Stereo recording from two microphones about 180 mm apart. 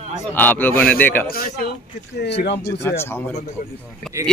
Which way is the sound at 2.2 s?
70° left (ahead or behind).